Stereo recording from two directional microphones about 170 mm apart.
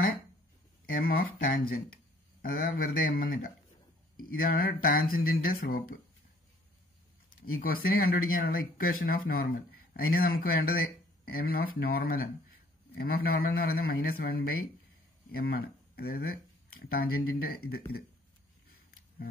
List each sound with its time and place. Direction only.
0.8 s speech: 60° left (ahead or behind)
7.2 s speech: 60° left (ahead or behind)